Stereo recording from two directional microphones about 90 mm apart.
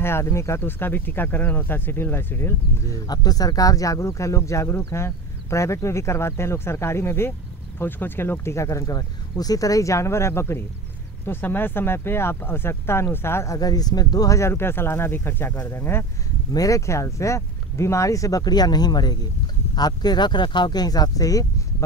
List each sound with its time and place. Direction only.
0.0 s speech: 30° left (ahead or behind)
3.1 s speech: 45° left (ahead or behind); by 13.6 s 30° left (ahead or behind)
13.6 s speech: 45° left (ahead or behind); by 16.1 s 25° left (ahead or behind)
16.5 s speech: 40° left (ahead or behind)